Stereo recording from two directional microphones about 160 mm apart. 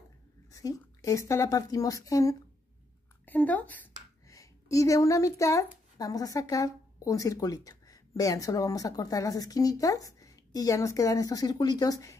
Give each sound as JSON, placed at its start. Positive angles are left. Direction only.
{"t": 0.5, "sound": "a woman's voice", "side_deg": 20}
{"t": 3.3, "sound": "a woman's voice", "side_deg": 10}